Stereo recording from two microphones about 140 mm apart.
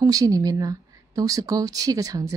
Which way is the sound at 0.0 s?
25° right (ahead or behind).